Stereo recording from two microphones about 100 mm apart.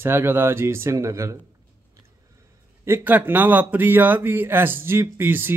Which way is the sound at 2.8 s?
20° right (ahead or behind).